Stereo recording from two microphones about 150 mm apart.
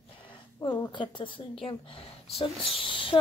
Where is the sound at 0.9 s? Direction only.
30° left (ahead or behind).